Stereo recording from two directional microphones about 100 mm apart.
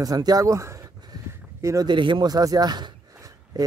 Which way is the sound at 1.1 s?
40° right (ahead or behind).